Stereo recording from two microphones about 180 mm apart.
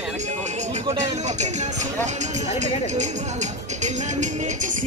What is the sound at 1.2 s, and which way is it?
Music, 40° right (ahead or behind).